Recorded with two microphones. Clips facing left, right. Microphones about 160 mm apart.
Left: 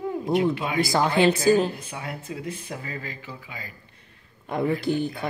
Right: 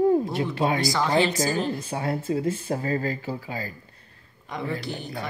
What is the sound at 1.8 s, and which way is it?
Speech, 35° right (ahead or behind).